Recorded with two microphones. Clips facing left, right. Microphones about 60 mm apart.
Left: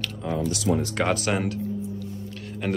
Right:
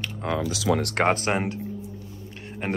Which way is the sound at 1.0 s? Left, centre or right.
Right.